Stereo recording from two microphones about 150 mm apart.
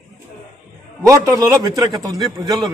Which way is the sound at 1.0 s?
20° right (ahead or behind).